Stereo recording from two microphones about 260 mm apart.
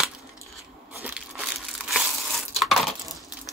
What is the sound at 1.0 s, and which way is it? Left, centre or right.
Crumpling, centre.